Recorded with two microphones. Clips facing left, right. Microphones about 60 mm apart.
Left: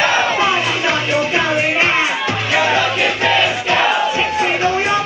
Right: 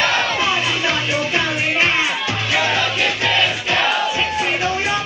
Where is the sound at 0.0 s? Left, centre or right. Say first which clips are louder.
Left 3 dB; centre.